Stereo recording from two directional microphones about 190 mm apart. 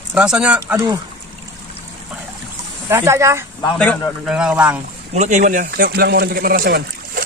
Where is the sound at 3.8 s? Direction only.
10° left (ahead or behind).